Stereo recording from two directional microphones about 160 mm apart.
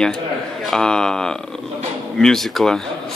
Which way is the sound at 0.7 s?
5° left (ahead or behind).